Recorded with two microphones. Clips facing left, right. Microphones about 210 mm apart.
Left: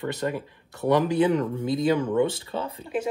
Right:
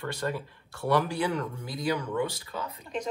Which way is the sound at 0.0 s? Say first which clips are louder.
Left 4 dB; 20° left (ahead or behind).